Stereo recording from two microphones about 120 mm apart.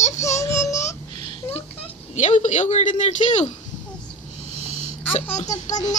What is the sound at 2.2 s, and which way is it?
A man's voice, 75° left (ahead or behind).